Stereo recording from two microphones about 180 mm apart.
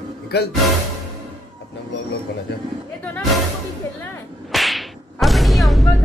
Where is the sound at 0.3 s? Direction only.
65° left (ahead or behind).